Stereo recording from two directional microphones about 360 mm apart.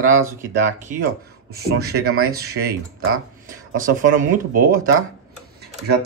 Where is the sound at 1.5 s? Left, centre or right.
Right.